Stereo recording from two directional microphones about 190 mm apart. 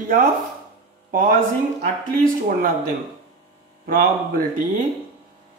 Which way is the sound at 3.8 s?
50° right (ahead or behind).